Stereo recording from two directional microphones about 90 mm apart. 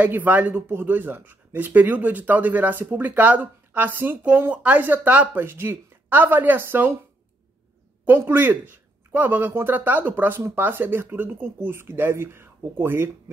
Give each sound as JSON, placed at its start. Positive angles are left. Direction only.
{"t": 0.0, "sound": "speech", "side_deg": -20}
{"t": 8.0, "sound": "speech", "side_deg": -20}